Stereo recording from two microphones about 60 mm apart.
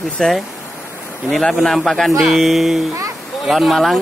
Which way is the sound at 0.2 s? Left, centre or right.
Centre.